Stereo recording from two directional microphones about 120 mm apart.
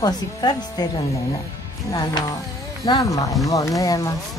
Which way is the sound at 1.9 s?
30° left (ahead or behind).